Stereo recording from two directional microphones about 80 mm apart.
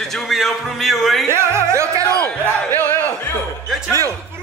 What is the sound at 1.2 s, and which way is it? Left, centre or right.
Music, right.